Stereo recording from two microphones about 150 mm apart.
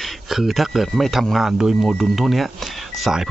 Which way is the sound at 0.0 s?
Centre (ahead or behind).